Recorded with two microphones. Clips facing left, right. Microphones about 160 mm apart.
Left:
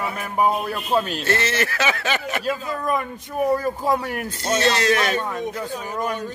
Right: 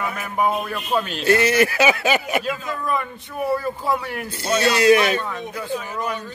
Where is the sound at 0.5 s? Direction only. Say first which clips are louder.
Left 1 dB; 10° left (ahead or behind).